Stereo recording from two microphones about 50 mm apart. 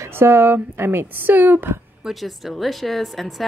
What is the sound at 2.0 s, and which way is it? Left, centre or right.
Speech, centre.